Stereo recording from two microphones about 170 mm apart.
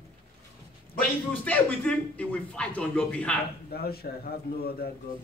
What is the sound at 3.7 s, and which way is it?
Speech, 65° left (ahead or behind).